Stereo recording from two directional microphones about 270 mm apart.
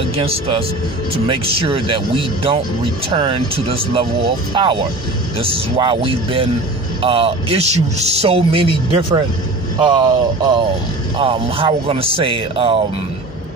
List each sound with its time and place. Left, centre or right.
0.1 s a man's voice: right